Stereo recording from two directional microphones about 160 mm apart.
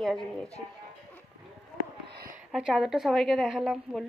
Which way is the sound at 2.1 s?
70° right (ahead or behind).